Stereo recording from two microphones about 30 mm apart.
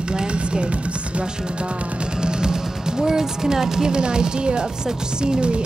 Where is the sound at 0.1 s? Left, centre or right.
Right.